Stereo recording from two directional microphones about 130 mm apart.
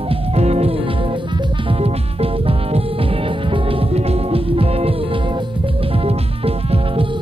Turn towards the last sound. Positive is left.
turn(degrees=-50)  # may be behind; listen again after turning